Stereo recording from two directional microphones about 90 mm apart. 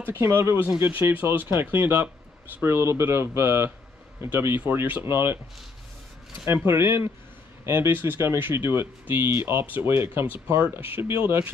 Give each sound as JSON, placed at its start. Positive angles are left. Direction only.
{"t": 0.0, "sound": "speech", "side_deg": -25}
{"t": 6.5, "sound": "speech", "side_deg": -30}